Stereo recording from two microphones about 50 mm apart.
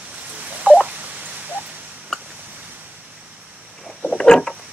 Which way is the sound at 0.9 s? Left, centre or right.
Right.